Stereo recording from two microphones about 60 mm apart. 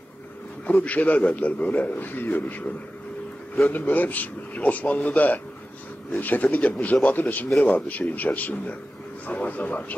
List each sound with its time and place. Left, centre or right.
0.7 s a man's voice: left